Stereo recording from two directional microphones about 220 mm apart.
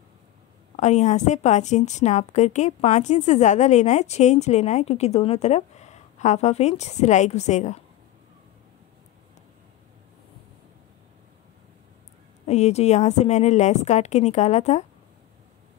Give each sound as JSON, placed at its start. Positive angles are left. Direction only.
{"t": 0.7, "sound": "a woman's voice", "side_deg": 30}
{"t": 12.4, "sound": "a woman's voice", "side_deg": 30}